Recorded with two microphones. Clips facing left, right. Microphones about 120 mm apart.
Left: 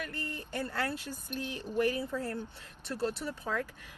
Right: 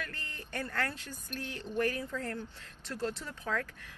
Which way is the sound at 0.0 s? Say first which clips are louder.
Left 4 dB; 15° left (ahead or behind).